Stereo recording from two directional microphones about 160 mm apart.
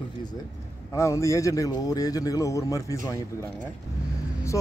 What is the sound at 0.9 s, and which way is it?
Speech, 20° left (ahead or behind).